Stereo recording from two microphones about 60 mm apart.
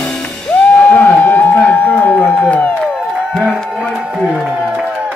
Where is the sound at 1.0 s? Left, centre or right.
Left.